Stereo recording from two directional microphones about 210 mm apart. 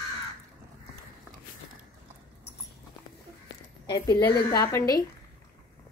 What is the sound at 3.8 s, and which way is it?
A woman's voice, 20° left (ahead or behind).